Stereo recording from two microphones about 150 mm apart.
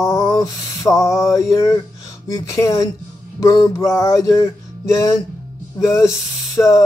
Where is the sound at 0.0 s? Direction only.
20° left (ahead or behind).